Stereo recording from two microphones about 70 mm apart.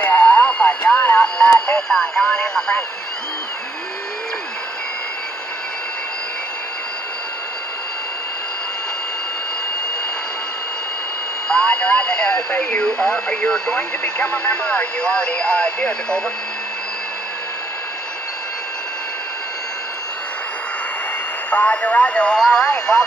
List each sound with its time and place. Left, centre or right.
0.0 s a sound: left
1.8 s speech: centre
11.5 s speech: centre
21.5 s speech: left